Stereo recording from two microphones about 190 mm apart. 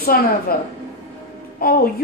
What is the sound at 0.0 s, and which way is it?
Speech, 50° left (ahead or behind).